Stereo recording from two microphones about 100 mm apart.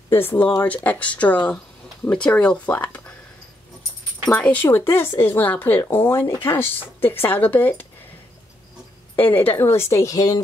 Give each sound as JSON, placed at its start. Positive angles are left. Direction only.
{"t": 0.1, "sound": "speech", "side_deg": 20}
{"t": 4.3, "sound": "speech", "side_deg": 15}
{"t": 9.1, "sound": "speech", "side_deg": 20}